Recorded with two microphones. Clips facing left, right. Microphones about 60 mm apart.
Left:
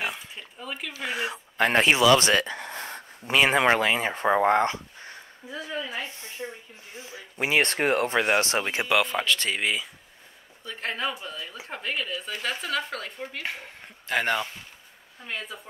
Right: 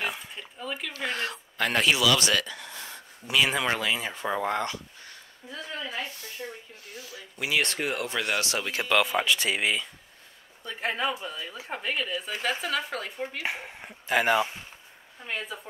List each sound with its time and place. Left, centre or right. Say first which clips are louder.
0.0 s oink: even; centre
1.6 s speech: left 4 dB; left
5.5 s speech: left 3 dB; centre
6.0 s speech: left 1 dB; left
8.8 s speech: right 2 dB; centre
9.2 s speech: even; centre